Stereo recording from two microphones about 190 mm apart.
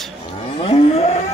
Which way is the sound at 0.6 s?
30° left (ahead or behind).